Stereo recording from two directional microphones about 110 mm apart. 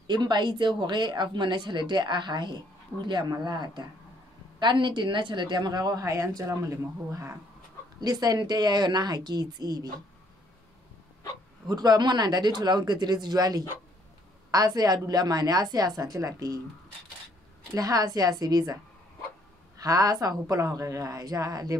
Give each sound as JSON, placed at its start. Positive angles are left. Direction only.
{"t": 0.0, "sound": "speech", "side_deg": -40}
{"t": 8.0, "sound": "speech", "side_deg": -35}
{"t": 11.6, "sound": "speech", "side_deg": -40}
{"t": 17.7, "sound": "speech", "side_deg": -35}
{"t": 19.8, "sound": "speech", "side_deg": -30}